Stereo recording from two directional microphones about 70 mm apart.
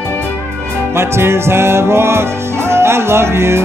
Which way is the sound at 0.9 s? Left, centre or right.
Right.